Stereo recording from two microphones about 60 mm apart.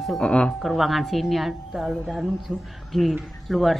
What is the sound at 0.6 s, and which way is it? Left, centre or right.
A woman's voice, centre.